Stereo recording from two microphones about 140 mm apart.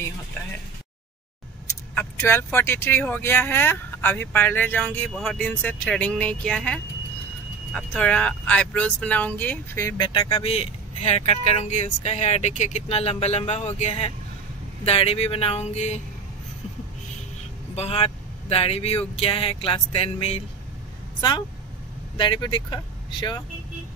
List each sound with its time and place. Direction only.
2.0 s speech: 15° left (ahead or behind); by 10.4 s 30° left (ahead or behind)
10.4 s speech: 45° left (ahead or behind)
17.7 s speech: 45° left (ahead or behind)
21.2 s speech: 30° left (ahead or behind)